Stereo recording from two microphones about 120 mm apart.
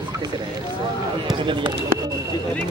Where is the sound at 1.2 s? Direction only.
40° right (ahead or behind).